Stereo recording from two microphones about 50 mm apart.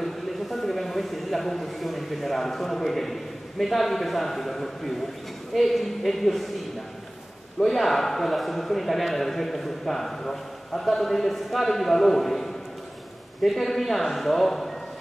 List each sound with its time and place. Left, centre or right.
0.0 s a man's voice: centre
7.6 s speech: centre